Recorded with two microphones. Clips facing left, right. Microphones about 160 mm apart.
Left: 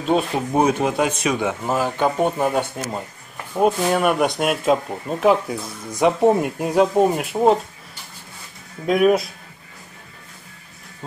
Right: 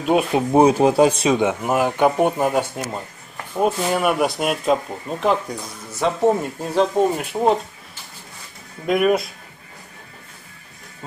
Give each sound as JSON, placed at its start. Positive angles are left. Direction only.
{"t": 0.0, "sound": "speech", "side_deg": -15}
{"t": 0.5, "sound": "speech", "side_deg": -30}
{"t": 5.9, "sound": "speech", "side_deg": 15}
{"t": 8.8, "sound": "speech", "side_deg": 0}